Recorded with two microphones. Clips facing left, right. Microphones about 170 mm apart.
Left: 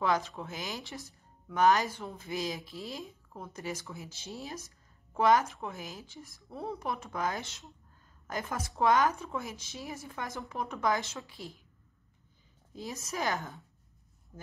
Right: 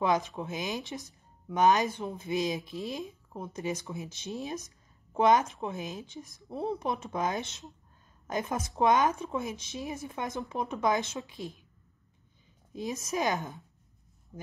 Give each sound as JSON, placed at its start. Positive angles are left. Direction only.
{"t": 0.0, "sound": "speech", "side_deg": -20}
{"t": 12.7, "sound": "speech", "side_deg": -20}
{"t": 14.3, "sound": "a sound", "side_deg": 0}